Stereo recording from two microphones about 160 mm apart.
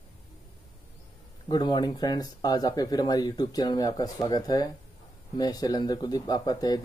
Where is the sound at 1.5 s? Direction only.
25° left (ahead or behind).